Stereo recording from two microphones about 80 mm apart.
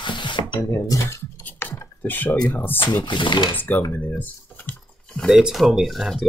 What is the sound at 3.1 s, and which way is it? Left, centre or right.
Speech, left.